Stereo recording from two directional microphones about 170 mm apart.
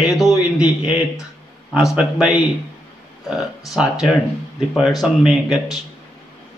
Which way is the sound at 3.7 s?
5° right (ahead or behind).